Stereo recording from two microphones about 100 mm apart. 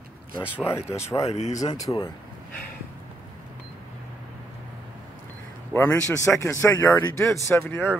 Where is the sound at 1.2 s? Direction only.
90° left.